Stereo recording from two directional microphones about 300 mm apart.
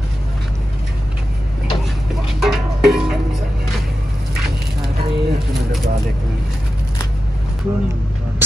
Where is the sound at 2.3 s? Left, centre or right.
Centre.